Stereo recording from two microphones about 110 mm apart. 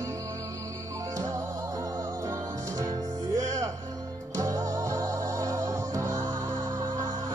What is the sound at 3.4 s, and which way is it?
Music, 30° right (ahead or behind).